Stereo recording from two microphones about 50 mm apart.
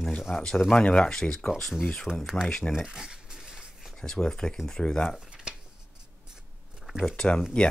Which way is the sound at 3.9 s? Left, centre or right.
Centre.